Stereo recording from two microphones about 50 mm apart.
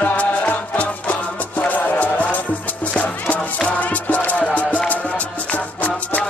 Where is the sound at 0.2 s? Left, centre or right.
Left.